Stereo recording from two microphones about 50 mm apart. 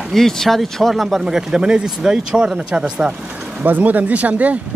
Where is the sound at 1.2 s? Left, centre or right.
Centre.